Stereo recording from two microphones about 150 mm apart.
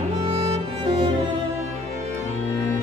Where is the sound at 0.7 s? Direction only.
40° right (ahead or behind).